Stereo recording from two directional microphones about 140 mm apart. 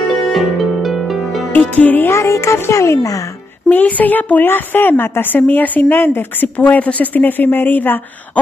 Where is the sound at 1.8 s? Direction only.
15° left (ahead or behind).